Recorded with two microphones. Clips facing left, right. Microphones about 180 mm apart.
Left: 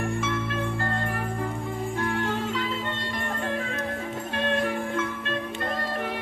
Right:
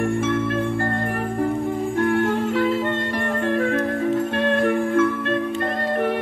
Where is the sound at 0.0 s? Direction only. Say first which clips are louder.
Right 7 dB; 50° right (ahead or behind).